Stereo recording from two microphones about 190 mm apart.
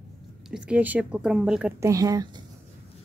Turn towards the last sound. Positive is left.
turn(degrees=-20)  # may be behind; listen again after turning